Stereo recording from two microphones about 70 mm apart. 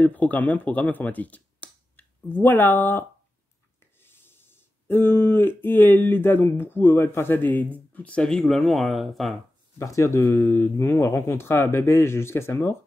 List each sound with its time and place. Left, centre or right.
0.0 s speech: left; by 9.3 s centre
9.8 s speech: left
10.4 s speech: left